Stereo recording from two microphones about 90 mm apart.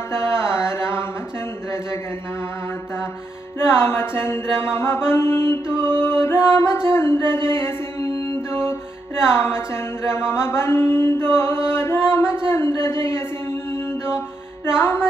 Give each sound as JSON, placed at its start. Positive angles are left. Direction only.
{"t": 0.1, "sound": "mantra", "side_deg": 30}
{"t": 3.6, "sound": "mantra", "side_deg": 25}
{"t": 5.9, "sound": "music", "side_deg": 25}
{"t": 7.3, "sound": "mantra", "side_deg": 25}
{"t": 8.5, "sound": "music", "side_deg": 25}
{"t": 9.2, "sound": "mantra", "side_deg": 30}
{"t": 11.7, "sound": "a sound", "side_deg": 25}
{"t": 14.8, "sound": "mantra", "side_deg": 25}